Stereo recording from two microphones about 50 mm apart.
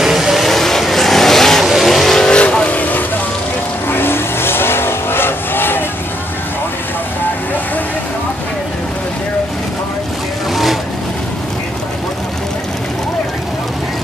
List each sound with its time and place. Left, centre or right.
0.0 s vehicle: centre
0.5 s vehicle: centre
2.7 s vehicle: left
3.9 s vehicle: left
10.5 s vehicle: centre